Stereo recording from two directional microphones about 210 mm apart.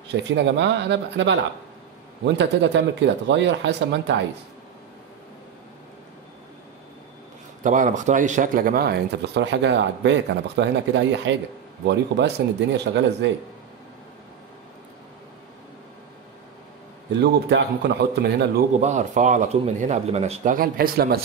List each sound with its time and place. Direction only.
0.1 s speech: 55° right (ahead or behind)
7.6 s speech: 35° right (ahead or behind); by 13.3 s 55° right (ahead or behind)
17.2 s speech: 55° right (ahead or behind)
18.8 s a man's voice: 35° right (ahead or behind)